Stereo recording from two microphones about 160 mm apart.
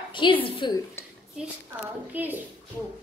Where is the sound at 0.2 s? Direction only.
30° left (ahead or behind).